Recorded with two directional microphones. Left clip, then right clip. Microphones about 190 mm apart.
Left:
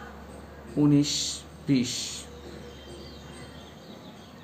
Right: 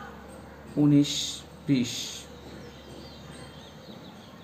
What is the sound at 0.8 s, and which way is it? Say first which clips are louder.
Speech: even; 20° left (ahead or behind).